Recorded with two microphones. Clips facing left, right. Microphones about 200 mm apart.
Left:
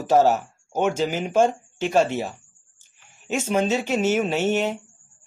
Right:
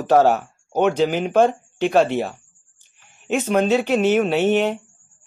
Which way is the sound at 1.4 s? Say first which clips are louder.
Right 3 dB; 60° right (ahead or behind).